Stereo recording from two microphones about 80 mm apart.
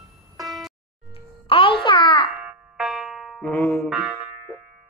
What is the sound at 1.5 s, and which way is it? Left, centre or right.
Music for children, left.